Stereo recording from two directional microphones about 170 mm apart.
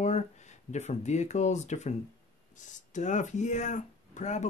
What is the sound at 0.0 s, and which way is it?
Speech, 45° left (ahead or behind).